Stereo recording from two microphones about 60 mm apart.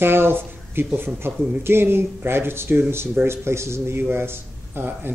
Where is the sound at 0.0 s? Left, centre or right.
Right.